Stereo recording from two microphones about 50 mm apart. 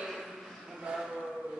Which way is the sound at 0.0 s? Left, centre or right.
Centre.